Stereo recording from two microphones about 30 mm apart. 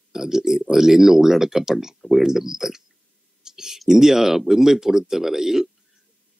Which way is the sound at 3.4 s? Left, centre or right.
Centre.